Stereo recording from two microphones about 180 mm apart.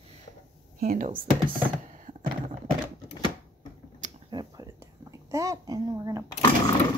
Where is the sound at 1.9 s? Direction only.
45° right (ahead or behind).